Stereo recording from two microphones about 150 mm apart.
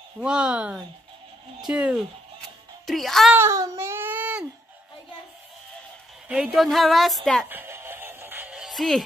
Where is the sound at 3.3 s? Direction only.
20° right (ahead or behind).